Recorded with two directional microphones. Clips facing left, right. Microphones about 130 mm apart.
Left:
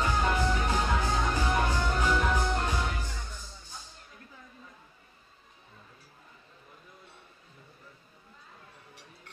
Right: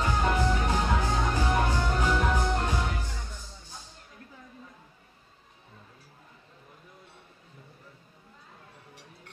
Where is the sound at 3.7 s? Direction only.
35° right (ahead or behind).